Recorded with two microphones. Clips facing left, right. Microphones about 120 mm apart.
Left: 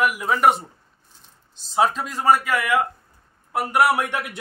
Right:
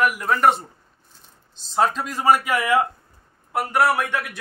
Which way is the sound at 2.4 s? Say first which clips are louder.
Right 1 dB; 25° right (ahead or behind).